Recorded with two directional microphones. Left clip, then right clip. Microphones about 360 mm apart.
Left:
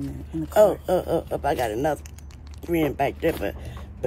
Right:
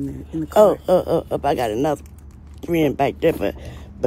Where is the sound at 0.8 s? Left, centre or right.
Centre.